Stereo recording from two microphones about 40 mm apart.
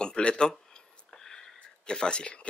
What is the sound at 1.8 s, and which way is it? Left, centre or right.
Speech, left.